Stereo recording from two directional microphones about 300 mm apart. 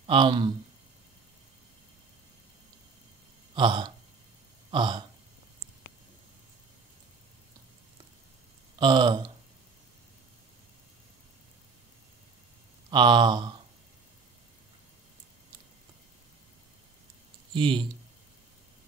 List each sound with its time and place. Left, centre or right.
0.0 s speech: centre
3.5 s speech: centre
4.6 s gasp: centre
8.7 s speech: centre
12.9 s speech: centre
17.6 s speech: centre